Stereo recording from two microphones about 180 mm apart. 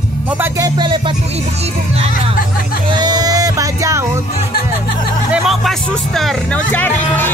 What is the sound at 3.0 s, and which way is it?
Music, 20° right (ahead or behind).